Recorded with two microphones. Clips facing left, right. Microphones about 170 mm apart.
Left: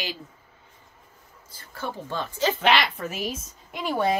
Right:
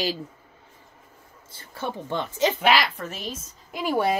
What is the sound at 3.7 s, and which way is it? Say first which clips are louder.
Speech: right 1 dB; 10° right (ahead or behind).